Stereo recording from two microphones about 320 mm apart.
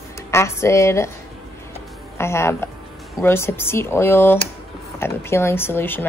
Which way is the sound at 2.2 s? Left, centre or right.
Centre.